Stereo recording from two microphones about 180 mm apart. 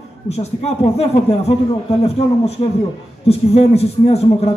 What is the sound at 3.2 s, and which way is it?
A man's voice, 35° left (ahead or behind).